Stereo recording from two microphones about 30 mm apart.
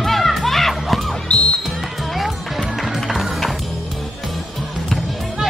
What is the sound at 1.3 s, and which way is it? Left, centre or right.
Music, left.